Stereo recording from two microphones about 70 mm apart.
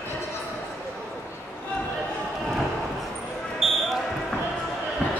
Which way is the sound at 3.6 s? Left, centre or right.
Centre.